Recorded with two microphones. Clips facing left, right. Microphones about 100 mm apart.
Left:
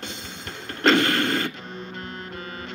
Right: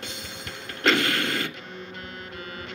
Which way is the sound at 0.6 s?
40° left (ahead or behind).